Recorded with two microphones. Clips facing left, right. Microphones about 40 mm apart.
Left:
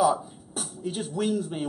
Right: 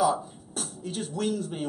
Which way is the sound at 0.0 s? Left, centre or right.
Centre.